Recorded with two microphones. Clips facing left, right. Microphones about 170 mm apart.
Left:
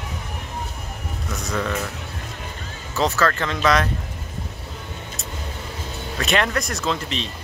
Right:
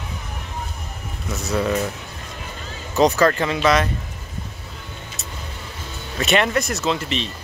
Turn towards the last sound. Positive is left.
turn(degrees=0)  # may be behind; listen again after turning